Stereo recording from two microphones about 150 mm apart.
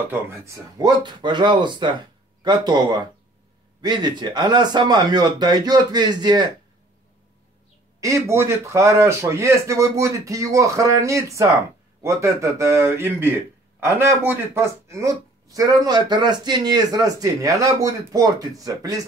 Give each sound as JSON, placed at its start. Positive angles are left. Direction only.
{"t": 0.1, "sound": "speech", "side_deg": -20}
{"t": 8.0, "sound": "speech", "side_deg": -20}